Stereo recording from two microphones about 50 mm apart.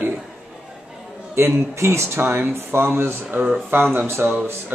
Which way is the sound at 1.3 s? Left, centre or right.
Right.